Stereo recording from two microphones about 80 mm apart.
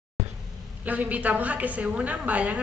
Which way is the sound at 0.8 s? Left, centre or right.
Centre.